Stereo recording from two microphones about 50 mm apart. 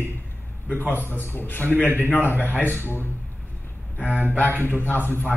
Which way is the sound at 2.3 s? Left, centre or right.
Right.